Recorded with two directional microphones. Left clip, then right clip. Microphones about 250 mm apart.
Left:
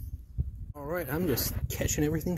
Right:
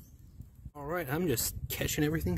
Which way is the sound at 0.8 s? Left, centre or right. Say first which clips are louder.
Left 1 dB; centre.